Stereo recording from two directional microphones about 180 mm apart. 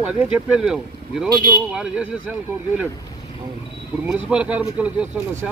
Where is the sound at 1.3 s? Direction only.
20° left (ahead or behind).